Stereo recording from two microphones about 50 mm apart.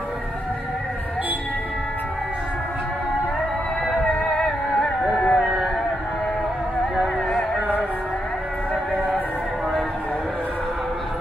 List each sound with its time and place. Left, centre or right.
3.8 s music: centre
4.1 s music: centre
5.1 s a sound: centre
7.2 s music: centre
8.9 s music: centre